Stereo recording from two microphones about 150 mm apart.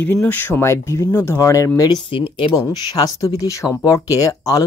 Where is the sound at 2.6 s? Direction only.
25° left (ahead or behind).